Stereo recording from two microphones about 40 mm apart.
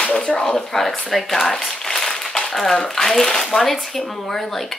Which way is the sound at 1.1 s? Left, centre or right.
Centre.